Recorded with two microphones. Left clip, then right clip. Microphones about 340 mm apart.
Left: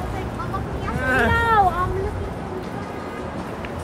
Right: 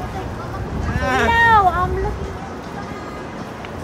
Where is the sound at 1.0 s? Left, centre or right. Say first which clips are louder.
Right 5 dB; right.